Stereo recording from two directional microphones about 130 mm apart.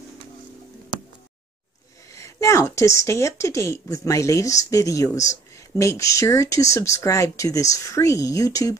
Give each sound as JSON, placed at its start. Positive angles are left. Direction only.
{"t": 2.1, "sound": "speech", "side_deg": 20}